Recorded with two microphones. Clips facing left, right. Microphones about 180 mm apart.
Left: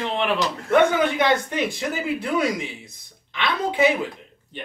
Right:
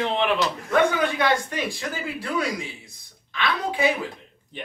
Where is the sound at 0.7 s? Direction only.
20° left (ahead or behind).